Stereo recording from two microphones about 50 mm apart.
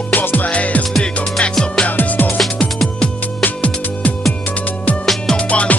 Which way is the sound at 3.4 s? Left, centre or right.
Left.